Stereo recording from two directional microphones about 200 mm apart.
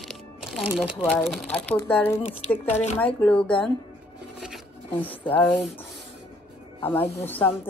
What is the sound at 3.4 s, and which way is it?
Speech, 25° left (ahead or behind).